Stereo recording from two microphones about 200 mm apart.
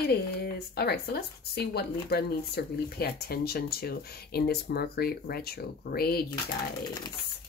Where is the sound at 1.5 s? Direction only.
55° left (ahead or behind).